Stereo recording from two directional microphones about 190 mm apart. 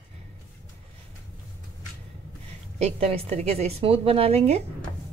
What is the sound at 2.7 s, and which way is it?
A woman's voice, 35° right (ahead or behind).